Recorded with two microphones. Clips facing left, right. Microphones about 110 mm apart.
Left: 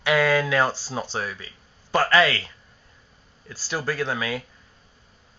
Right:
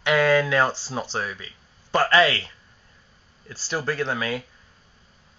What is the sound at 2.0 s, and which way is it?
Speech, 20° right (ahead or behind).